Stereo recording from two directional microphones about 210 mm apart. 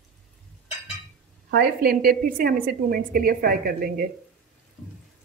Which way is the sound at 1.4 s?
50° right (ahead or behind).